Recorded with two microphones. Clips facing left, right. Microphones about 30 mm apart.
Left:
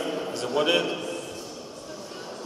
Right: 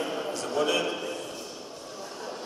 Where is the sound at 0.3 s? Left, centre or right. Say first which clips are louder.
Left 4 dB; left.